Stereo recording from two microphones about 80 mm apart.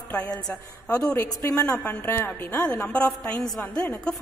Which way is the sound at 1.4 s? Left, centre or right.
Left.